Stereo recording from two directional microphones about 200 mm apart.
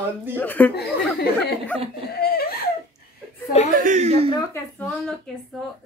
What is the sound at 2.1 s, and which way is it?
Laughter, 50° left (ahead or behind).